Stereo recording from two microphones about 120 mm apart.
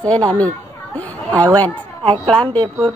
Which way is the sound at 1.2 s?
30° right (ahead or behind).